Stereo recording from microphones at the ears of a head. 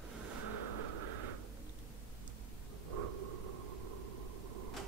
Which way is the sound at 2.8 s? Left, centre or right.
Right.